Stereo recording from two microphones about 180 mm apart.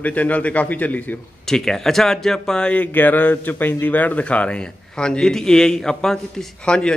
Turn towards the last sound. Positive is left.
turn(degrees=5)  # may be behind; listen again after turning